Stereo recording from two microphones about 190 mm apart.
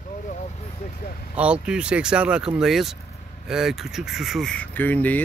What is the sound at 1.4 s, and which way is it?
Speech, 5° right (ahead or behind).